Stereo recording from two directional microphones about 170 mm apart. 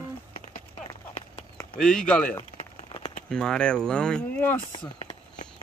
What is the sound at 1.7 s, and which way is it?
Speech, 5° left (ahead or behind).